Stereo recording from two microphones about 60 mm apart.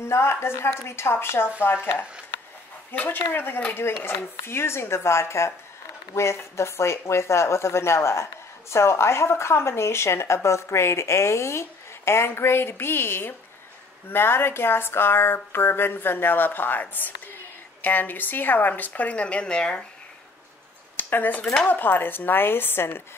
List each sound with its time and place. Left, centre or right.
0.0 s speech: left
17.8 s a woman's voice: left; by 19.9 s centre
21.0 s speech: left